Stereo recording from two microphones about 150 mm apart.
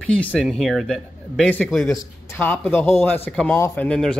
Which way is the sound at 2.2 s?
15° left (ahead or behind).